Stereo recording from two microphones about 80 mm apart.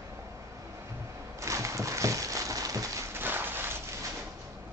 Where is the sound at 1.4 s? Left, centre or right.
Right.